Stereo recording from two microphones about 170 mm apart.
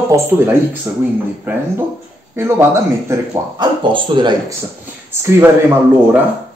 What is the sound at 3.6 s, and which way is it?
Speech, 30° right (ahead or behind).